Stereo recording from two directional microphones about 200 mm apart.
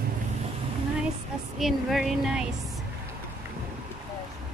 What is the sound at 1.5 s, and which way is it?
Speech, centre (ahead or behind).